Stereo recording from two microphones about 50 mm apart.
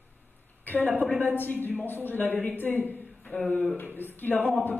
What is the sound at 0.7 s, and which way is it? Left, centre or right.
A man's voice, left.